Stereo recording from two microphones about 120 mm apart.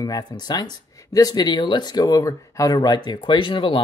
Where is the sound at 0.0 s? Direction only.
30° left (ahead or behind).